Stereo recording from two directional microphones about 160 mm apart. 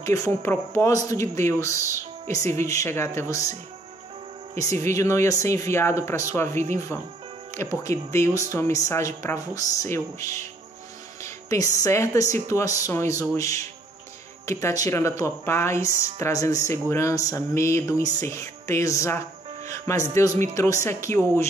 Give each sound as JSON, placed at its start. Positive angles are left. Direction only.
{"t": 0.0, "sound": "speech", "side_deg": 20}
{"t": 4.8, "sound": "speech", "side_deg": 20}
{"t": 6.5, "sound": "speech", "side_deg": -50}
{"t": 7.5, "sound": "a woman's voice", "side_deg": 20}